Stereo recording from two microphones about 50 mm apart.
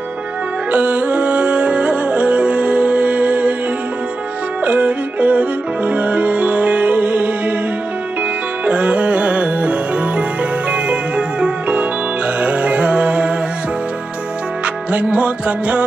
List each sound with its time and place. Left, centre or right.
0.7 s music: right
4.6 s music: right
8.6 s music: right
14.9 s music: right